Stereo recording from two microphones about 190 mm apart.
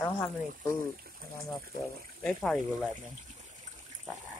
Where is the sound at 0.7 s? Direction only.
50° right (ahead or behind).